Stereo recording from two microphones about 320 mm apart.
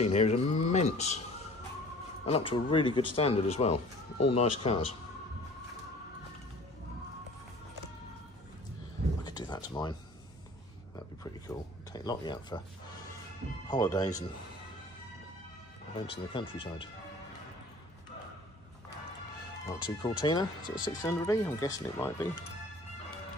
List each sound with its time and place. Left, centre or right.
0.0 s speech: centre
2.2 s speech: centre
3.7 s speech: left
4.6 s speech: centre
9.2 s a sound: centre
11.4 s speech: centre
13.7 s speech: centre
15.9 s speech: centre
19.6 s speech: centre